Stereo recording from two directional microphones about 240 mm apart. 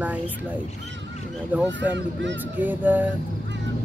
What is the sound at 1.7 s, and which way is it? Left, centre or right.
Speech, right.